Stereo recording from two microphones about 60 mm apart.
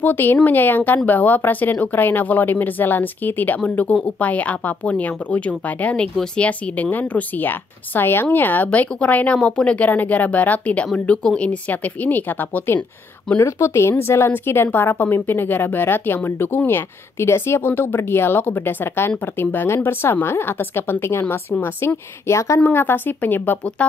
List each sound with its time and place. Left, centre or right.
0.0 s a woman's voice: left
13.4 s speech: left
22.6 s speech: left
23.8 s a woman's voice: left